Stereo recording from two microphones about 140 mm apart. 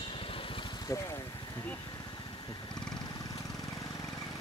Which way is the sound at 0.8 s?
20° left (ahead or behind).